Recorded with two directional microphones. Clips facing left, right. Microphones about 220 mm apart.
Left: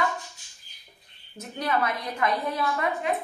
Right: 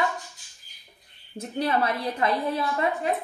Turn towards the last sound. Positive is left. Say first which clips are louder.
# right 1 dB
turn(degrees=-30)  # may be behind; listen again after turning